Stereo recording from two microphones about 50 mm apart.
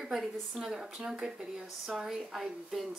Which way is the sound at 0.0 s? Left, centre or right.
Centre.